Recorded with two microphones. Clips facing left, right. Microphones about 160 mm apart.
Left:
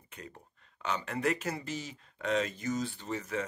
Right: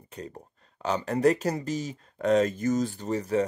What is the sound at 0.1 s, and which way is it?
Speech, 35° right (ahead or behind).